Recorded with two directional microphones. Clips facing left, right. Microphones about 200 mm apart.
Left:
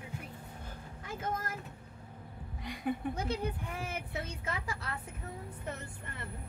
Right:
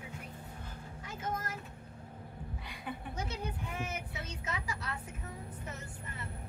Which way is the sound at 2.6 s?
45° left (ahead or behind).